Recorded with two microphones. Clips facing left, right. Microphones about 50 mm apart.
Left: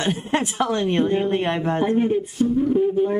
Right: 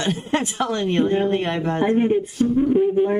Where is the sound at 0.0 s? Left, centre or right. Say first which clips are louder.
Even; left.